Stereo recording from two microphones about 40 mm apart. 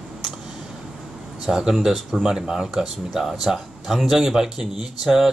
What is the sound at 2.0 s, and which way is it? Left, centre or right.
Speech, centre.